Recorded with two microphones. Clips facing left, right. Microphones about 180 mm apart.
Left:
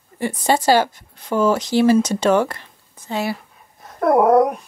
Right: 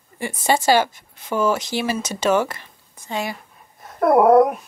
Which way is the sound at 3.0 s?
15° right (ahead or behind).